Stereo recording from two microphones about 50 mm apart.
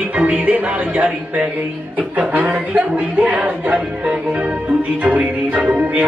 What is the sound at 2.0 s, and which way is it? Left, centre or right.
Speech, right.